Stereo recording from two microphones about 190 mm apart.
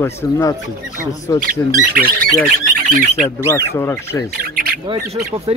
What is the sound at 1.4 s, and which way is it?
Speech, 50° right (ahead or behind).